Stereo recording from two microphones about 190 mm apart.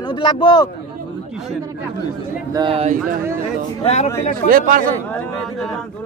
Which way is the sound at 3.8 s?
35° left (ahead or behind).